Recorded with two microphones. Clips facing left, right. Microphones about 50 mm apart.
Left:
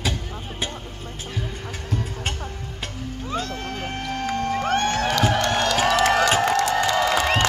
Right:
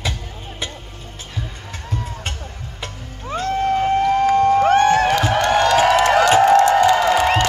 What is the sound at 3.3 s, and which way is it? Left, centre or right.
Music, centre.